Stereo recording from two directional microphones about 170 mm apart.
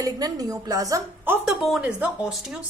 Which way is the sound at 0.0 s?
20° right (ahead or behind).